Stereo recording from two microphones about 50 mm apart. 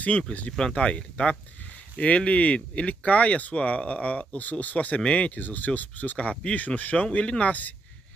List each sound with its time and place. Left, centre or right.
0.3 s speech: left